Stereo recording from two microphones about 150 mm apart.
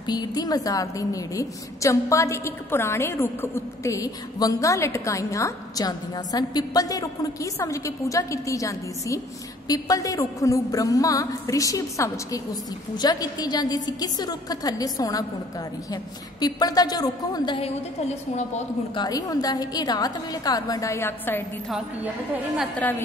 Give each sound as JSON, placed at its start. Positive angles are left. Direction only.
{"t": 0.0, "sound": "a woman's voice", "side_deg": 25}
{"t": 18.9, "sound": "a woman's voice", "side_deg": 25}
{"t": 21.6, "sound": "a woman's voice", "side_deg": -5}
{"t": 22.8, "sound": "a woman's voice", "side_deg": 10}